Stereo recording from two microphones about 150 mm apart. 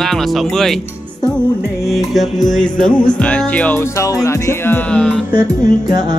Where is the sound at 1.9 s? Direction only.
Centre (ahead or behind); by 4.8 s 20° left (ahead or behind).